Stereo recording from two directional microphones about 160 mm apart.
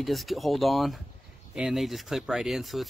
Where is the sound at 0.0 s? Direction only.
Centre (ahead or behind).